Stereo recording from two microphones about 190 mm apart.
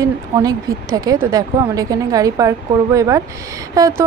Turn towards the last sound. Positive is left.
turn(degrees=-15)  # may be behind; listen again after turning